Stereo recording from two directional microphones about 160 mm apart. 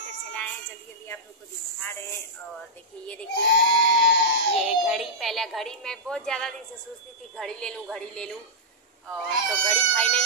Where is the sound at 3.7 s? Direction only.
90° left.